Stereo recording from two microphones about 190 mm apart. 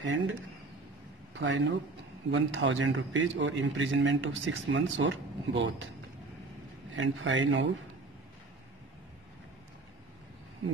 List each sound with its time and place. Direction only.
0.0 s a man's voice: 85° right
1.3 s a man's voice: 75° right (ahead or behind)
2.3 s a man's voice: 85° right
6.9 s a man's voice: 85° right